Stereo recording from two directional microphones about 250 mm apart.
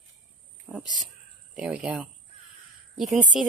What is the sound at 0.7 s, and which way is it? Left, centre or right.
Speech, centre.